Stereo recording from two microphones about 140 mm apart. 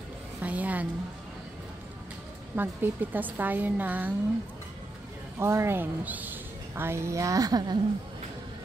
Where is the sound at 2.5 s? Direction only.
15° right (ahead or behind).